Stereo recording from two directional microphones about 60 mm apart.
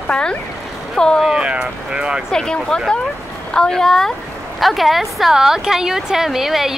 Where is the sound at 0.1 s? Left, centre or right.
Centre.